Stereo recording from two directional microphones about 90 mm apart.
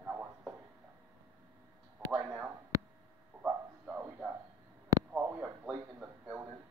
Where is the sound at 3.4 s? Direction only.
15° right (ahead or behind).